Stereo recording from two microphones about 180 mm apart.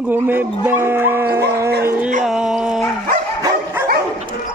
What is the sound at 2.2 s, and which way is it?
Dog, 5° right (ahead or behind).